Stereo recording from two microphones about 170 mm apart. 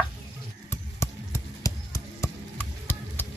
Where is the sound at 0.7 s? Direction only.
15° left (ahead or behind).